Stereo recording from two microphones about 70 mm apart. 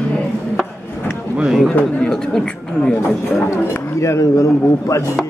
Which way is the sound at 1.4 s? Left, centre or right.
Centre.